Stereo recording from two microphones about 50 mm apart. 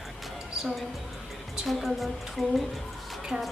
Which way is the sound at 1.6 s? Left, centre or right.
Centre.